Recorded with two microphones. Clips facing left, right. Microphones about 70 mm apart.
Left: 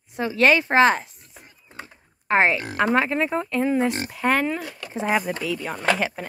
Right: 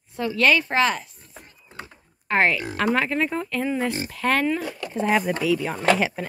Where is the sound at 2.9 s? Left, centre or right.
Centre.